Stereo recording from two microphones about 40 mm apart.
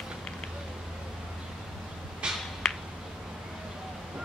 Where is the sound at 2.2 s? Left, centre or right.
Right.